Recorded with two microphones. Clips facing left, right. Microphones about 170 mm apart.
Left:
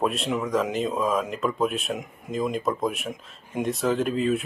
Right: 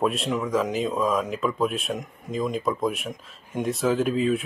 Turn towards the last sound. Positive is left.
turn(degrees=0)  # may be behind; listen again after turning